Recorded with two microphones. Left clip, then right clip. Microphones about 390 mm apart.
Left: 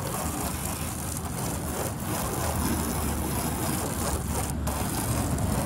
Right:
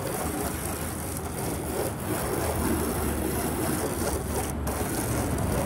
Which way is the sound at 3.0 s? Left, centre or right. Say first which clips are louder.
Right 2 dB; centre.